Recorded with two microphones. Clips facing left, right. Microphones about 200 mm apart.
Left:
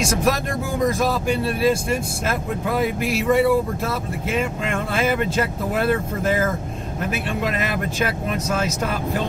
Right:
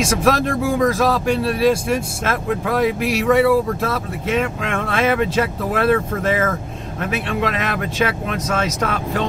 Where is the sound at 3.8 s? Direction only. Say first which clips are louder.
Right 3 dB; centre (ahead or behind).